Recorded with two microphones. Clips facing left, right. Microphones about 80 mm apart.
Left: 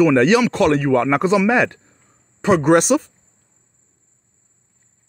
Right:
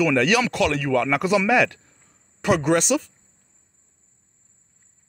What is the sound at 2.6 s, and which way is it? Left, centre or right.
Speech, left.